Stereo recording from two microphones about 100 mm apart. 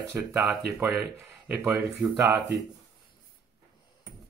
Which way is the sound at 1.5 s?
25° right (ahead or behind).